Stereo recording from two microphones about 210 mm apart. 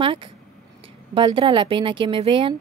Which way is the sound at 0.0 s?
25° right (ahead or behind).